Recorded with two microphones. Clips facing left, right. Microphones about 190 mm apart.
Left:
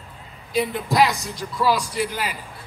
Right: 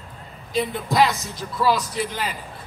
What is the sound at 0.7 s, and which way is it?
A man's voice, centre (ahead or behind).